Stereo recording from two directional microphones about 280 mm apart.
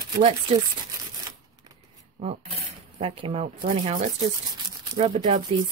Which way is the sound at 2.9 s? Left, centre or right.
Centre.